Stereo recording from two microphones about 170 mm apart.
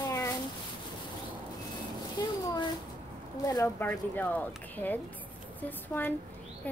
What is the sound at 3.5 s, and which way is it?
Speech, 15° left (ahead or behind).